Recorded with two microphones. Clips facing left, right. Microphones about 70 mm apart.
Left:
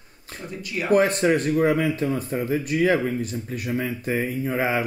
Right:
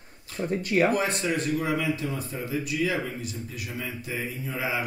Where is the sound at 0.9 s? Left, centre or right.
Left.